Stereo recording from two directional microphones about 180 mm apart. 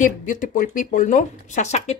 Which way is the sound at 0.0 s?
45° left (ahead or behind).